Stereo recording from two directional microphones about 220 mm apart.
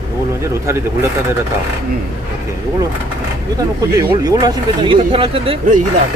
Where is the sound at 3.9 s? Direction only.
15° right (ahead or behind).